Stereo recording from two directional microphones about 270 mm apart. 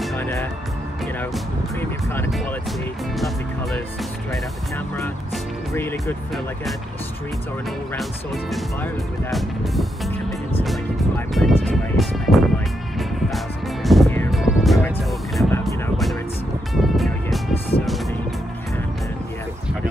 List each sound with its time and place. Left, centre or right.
0.1 s speech: centre
4.3 s speech: centre
7.9 s speech: centre
13.8 s music: centre